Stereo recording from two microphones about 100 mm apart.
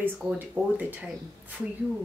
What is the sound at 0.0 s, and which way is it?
Speech, 10° right (ahead or behind).